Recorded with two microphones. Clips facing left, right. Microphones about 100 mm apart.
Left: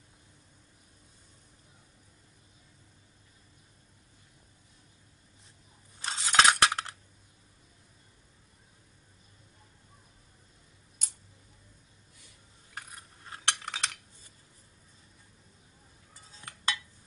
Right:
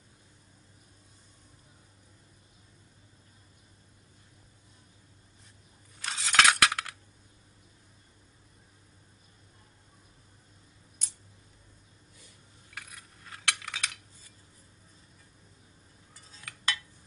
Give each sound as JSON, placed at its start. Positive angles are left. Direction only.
{"t": 5.9, "sound": "scissors", "side_deg": 25}
{"t": 12.7, "sound": "a sound", "side_deg": 35}
{"t": 16.3, "sound": "dishes", "side_deg": 30}